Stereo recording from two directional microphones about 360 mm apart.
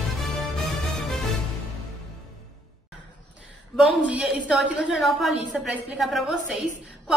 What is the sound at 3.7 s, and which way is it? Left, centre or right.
A woman's voice, centre.